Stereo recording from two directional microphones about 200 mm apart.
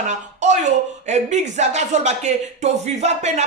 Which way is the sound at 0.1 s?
35° right (ahead or behind).